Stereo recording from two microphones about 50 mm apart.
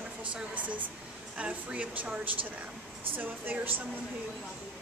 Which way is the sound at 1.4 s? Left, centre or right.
Right.